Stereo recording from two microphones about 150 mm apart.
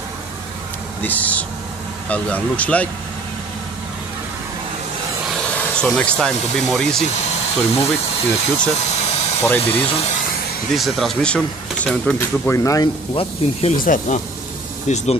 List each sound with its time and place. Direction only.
1.0 s speech: 10° left (ahead or behind)
5.2 s a sound: 5° left (ahead or behind)
5.9 s speech: 5° left (ahead or behind)
6.3 s speech: 50° left (ahead or behind)
6.7 s speech: 5° left (ahead or behind)
7.1 s speech: 50° left (ahead or behind)
8.7 s vehicle: 45° left (ahead or behind)
9.6 s speech: 35° left (ahead or behind)
10.7 s speech: centre (ahead or behind)
12.5 s speech: 25° left (ahead or behind)
13.1 s speech: 40° left (ahead or behind)
13.8 s speech: 55° left (ahead or behind)